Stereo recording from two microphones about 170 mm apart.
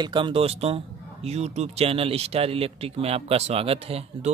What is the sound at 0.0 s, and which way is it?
Speech, 30° right (ahead or behind).